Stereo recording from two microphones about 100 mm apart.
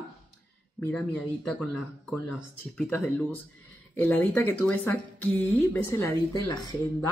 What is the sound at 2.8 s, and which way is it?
Speech, 15° left (ahead or behind).